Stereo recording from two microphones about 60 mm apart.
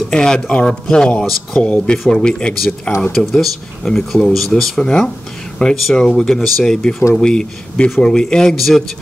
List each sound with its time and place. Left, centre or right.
0.1 s speech: centre
3.1 s speech: centre
8.5 s speech: centre